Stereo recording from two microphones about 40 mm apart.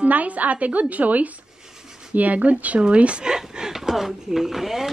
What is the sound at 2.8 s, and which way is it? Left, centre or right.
Speech, right.